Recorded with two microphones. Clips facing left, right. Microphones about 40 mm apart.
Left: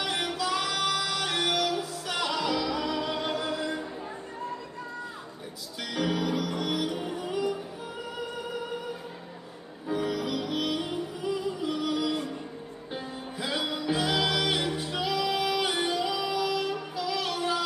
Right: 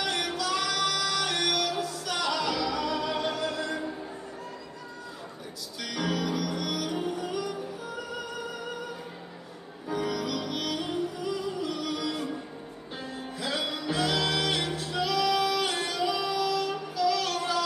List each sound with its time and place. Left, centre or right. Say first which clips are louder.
0.0 s music: even; left
5.9 s music: left 1 dB; centre
9.8 s music: left 1 dB; centre